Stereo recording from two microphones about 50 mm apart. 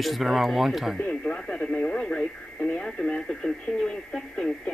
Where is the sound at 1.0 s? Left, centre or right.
Left.